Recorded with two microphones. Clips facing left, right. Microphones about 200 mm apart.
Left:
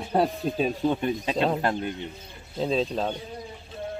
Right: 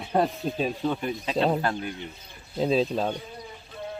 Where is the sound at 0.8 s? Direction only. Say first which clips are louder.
Left 3 dB; 20° left (ahead or behind).